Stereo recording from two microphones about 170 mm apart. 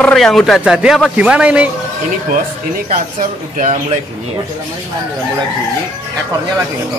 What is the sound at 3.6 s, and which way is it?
Speech, 40° right (ahead or behind).